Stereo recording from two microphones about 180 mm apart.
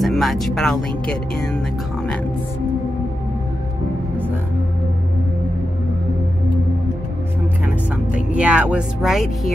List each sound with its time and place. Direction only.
0.0 s speech: centre (ahead or behind)
7.6 s speech: 5° right (ahead or behind)